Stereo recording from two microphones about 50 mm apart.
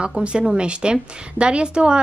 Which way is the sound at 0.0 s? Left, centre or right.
Right.